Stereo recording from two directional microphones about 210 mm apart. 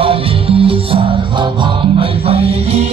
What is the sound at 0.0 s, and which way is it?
Music, 25° right (ahead or behind).